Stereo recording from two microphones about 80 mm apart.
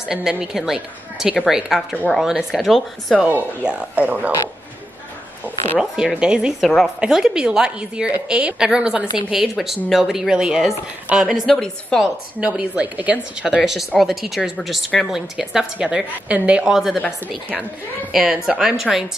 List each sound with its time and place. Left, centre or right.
0.1 s a woman's voice: centre
3.6 s speech: centre
5.8 s a woman's voice: centre
6.6 s a woman's voice: centre
11.5 s a woman's voice: centre
12.4 s a woman's voice: centre
13.6 s a woman's voice: centre
18.1 s speech: centre